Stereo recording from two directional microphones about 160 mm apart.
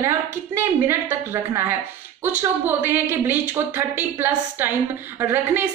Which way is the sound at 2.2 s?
10° right (ahead or behind).